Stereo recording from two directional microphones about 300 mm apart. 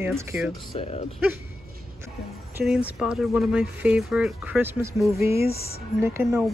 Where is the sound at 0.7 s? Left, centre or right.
Centre.